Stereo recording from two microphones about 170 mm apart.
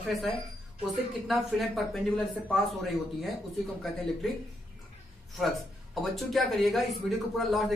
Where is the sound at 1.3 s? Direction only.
Centre (ahead or behind).